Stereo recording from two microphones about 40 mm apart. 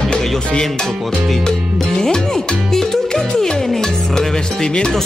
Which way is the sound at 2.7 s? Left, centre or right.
Centre.